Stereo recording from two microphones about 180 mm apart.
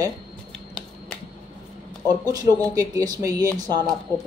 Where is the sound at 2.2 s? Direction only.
20° right (ahead or behind).